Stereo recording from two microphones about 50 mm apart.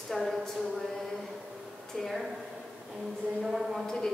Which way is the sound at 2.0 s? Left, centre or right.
Centre.